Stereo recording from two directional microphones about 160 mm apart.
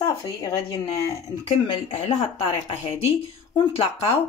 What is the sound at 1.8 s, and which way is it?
A woman's voice, 35° left (ahead or behind).